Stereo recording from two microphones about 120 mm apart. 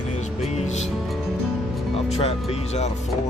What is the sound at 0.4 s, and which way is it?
Music, 65° left (ahead or behind).